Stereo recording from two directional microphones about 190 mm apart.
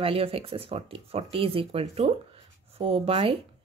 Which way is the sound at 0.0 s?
30° right (ahead or behind).